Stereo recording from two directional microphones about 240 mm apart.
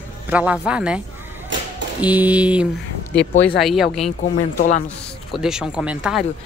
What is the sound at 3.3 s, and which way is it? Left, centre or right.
Speech, left.